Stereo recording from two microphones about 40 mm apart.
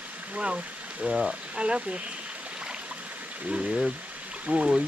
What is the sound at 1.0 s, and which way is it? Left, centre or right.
Speech, centre.